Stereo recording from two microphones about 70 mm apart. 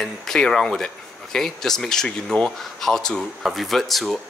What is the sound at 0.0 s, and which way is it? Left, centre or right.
Speech, centre.